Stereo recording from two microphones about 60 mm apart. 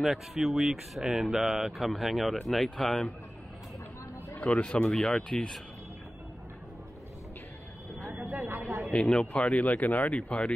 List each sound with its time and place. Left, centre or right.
0.0 s speech: centre
4.4 s speech: left
8.4 s speech: right
8.9 s speech: centre
9.3 s speech: centre